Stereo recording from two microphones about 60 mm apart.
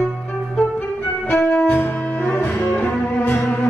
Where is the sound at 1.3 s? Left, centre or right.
Left.